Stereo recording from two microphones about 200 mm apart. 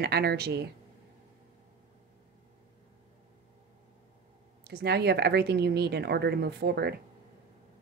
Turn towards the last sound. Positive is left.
turn(degrees=-55)  # may be behind; listen again after turning